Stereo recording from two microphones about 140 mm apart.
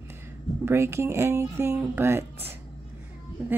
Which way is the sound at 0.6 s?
20° right (ahead or behind).